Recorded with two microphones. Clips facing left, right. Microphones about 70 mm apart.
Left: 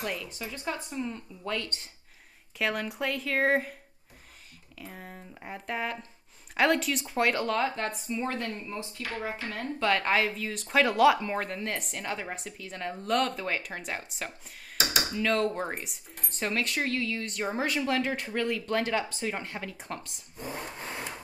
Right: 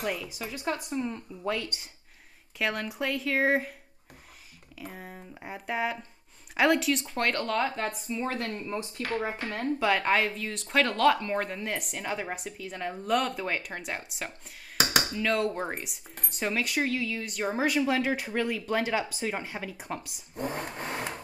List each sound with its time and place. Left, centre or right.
0.0 s speech: centre
4.7 s speech: centre
8.9 s speech: right
9.7 s speech: centre
11.4 s speech: centre
20.3 s speech: right